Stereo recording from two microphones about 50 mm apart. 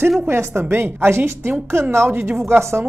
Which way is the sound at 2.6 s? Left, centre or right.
Right.